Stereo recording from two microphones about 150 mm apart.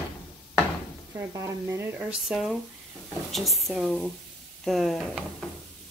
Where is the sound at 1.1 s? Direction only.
20° right (ahead or behind).